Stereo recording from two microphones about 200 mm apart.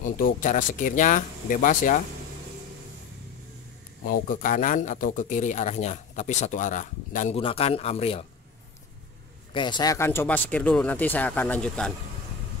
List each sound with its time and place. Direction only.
0.4 s speech: 40° left (ahead or behind)
4.0 s speech: 45° left (ahead or behind)
9.5 s speech: 25° left (ahead or behind); by 11.9 s 5° left (ahead or behind)